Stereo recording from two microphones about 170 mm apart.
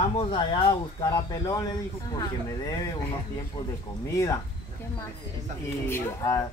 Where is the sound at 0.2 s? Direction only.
30° left (ahead or behind).